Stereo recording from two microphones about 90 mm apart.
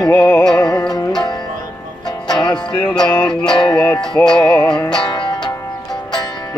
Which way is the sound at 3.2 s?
10° left (ahead or behind).